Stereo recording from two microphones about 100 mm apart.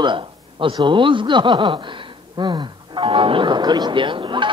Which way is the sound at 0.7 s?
55° right (ahead or behind).